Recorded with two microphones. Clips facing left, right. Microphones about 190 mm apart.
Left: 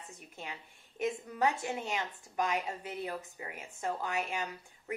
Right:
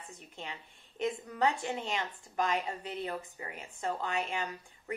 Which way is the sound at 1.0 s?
15° left (ahead or behind).